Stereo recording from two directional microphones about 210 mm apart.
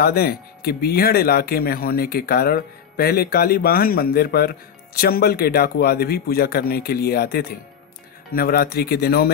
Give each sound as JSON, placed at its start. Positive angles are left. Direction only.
{"t": 0.0, "sound": "speech", "side_deg": 45}